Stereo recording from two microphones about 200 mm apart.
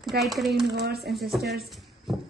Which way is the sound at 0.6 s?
55° right (ahead or behind).